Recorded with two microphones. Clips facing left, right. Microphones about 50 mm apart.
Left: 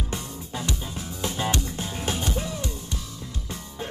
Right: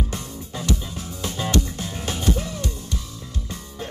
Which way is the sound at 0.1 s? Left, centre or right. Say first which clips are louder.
Even; left.